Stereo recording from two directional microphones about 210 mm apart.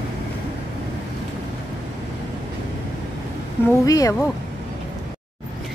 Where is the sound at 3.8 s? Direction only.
15° left (ahead or behind).